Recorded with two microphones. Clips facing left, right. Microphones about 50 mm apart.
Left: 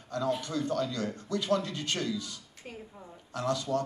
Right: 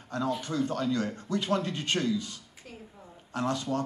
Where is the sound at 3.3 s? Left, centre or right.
Right.